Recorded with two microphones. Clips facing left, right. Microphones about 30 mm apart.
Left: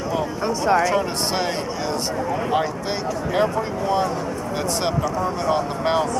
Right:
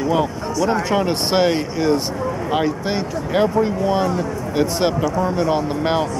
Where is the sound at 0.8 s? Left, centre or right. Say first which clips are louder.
Right 2 dB; right.